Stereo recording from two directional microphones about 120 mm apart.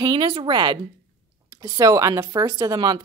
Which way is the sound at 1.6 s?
30° right (ahead or behind).